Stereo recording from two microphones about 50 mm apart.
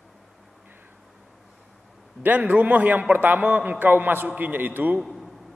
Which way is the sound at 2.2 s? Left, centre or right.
Right.